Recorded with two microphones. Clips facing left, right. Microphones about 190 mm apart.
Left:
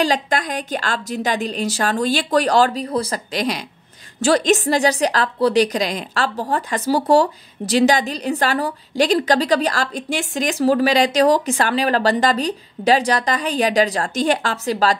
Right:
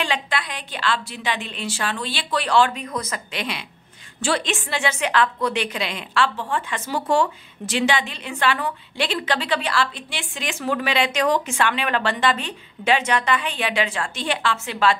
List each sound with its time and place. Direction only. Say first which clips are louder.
0.0 s a woman's voice: left 6 dB; 40° left (ahead or behind)